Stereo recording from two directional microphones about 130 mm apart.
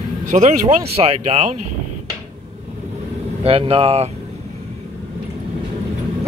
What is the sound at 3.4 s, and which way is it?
Speech, 50° right (ahead or behind).